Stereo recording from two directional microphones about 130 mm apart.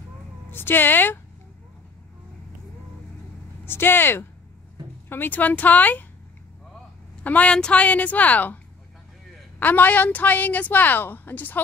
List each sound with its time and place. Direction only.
0.5 s a woman's voice: 15° left (ahead or behind)
3.6 s a woman's voice: 15° left (ahead or behind)
7.2 s a woman's voice: 10° left (ahead or behind)
9.6 s a woman's voice: 15° left (ahead or behind)